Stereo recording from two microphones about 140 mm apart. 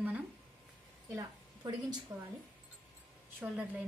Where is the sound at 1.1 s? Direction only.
25° right (ahead or behind).